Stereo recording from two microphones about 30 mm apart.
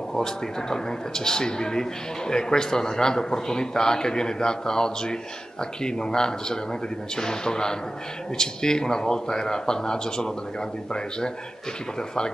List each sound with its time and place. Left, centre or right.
0.1 s a man's voice: centre